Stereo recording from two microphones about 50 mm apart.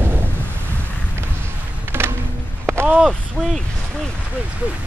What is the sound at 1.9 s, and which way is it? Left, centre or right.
Music, right.